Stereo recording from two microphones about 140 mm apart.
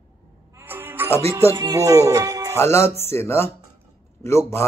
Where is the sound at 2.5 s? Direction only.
20° left (ahead or behind).